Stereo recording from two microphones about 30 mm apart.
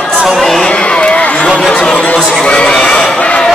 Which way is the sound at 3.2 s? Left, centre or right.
Left.